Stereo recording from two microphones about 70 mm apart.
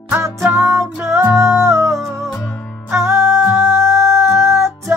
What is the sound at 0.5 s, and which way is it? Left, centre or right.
Music, right.